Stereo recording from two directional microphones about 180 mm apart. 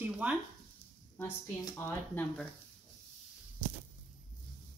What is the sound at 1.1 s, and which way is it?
Speech, 10° left (ahead or behind).